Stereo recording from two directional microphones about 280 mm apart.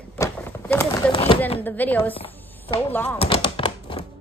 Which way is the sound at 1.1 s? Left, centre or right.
Centre.